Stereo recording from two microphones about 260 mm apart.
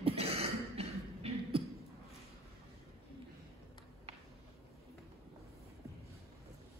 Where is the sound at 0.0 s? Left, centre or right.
Right.